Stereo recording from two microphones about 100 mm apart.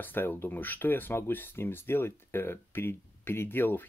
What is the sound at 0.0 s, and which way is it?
Speech, 20° left (ahead or behind).